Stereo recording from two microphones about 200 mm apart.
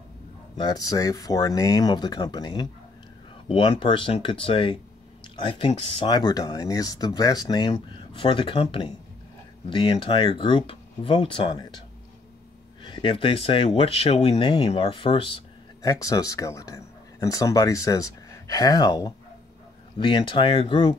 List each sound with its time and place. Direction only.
0.6 s speech: 20° left (ahead or behind)
12.8 s speech: 25° left (ahead or behind)
15.8 s speech: 15° left (ahead or behind)